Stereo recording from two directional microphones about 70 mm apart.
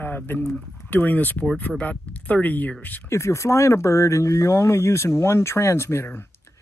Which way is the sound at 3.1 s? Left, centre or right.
Left.